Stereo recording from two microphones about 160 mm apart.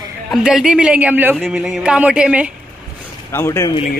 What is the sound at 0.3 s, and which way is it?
Speech, 5° right (ahead or behind).